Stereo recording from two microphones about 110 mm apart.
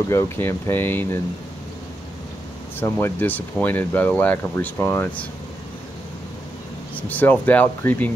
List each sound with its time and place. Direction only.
0.1 s speech: 25° left (ahead or behind)
2.8 s speech: 20° left (ahead or behind)
7.0 s speech: 15° left (ahead or behind)